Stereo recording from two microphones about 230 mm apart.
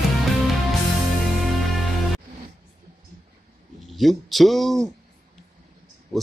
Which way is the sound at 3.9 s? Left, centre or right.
Centre.